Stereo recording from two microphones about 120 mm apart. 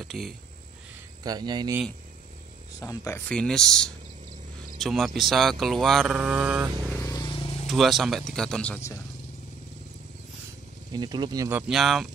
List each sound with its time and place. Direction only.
0.0 s speech: centre (ahead or behind)
1.2 s speech: 35° right (ahead or behind)
2.8 s speech: 25° left (ahead or behind)
3.3 s speech: 5° left (ahead or behind)
6.1 s mantra: 10° right (ahead or behind)
7.0 s vehicle: 25° left (ahead or behind)
7.2 s vehicle: 50° left (ahead or behind)
7.6 s speech: centre (ahead or behind)
10.9 s speech: 35° right (ahead or behind)
11.4 s mantra: 15° right (ahead or behind)
11.7 s speech: centre (ahead or behind)